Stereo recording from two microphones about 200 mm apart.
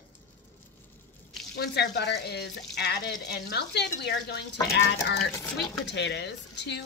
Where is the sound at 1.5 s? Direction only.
55° left (ahead or behind).